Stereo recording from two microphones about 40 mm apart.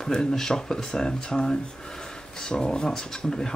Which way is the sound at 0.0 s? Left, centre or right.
Centre.